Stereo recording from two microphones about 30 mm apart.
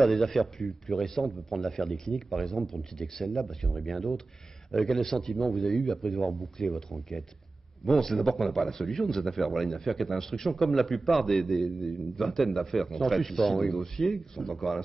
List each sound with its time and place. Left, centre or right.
0.0 s a man's voice: centre
5.7 s speech: centre
6.1 s a man's voice: centre